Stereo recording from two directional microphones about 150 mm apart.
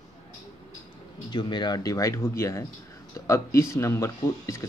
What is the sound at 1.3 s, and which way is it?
Speech, 30° left (ahead or behind).